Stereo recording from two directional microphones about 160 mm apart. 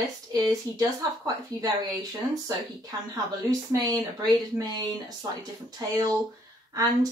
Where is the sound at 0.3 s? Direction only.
25° right (ahead or behind).